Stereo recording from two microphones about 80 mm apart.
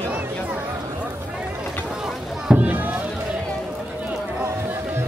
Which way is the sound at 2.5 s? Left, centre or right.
Right.